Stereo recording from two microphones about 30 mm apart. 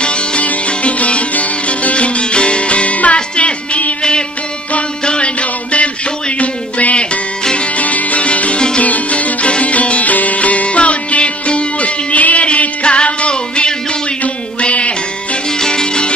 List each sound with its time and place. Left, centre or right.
0.0 s music: left
0.7 s music: left
5.0 s music: left
5.4 s music: left
8.5 s music: left
8.8 s music: left
12.8 s music: left
15.6 s music: left